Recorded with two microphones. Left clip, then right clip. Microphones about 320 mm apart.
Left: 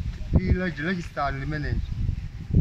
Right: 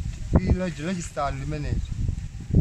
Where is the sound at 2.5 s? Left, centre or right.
Right.